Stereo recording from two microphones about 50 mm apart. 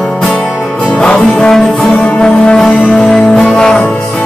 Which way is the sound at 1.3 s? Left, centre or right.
Centre.